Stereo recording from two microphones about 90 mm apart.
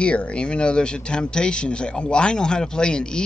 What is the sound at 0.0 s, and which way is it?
Speech, 15° left (ahead or behind).